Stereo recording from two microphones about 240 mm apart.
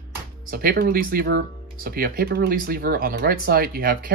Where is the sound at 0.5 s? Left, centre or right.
Right.